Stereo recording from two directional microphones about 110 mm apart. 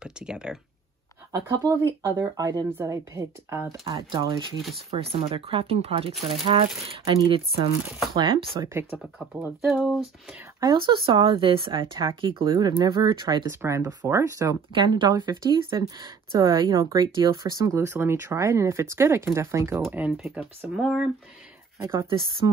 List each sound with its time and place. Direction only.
0.0 s speech: 5° right (ahead or behind)
1.3 s speech: 30° right (ahead or behind)
3.8 s speech: 50° right (ahead or behind)
4.9 s speech: 60° right (ahead or behind)
8.9 s speech: centre (ahead or behind)
9.3 s speech: 20° right (ahead or behind)
9.7 s speech: centre (ahead or behind)
10.6 s speech: 45° right (ahead or behind)
13.5 s speech: 25° right (ahead or behind)
14.7 s speech: 45° right (ahead or behind); by 19.8 s 25° right (ahead or behind)
20.1 s speech: 5° right (ahead or behind)
20.3 s speech: 15° right (ahead or behind)
20.8 s speech: 5° right (ahead or behind)
21.7 s speech: 30° right (ahead or behind)